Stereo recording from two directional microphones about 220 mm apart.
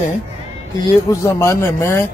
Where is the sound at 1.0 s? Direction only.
15° left (ahead or behind).